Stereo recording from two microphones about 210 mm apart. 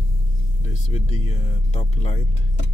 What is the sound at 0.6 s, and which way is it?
Speech, 30° left (ahead or behind).